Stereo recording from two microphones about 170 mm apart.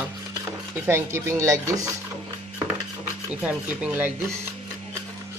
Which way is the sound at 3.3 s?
10° right (ahead or behind).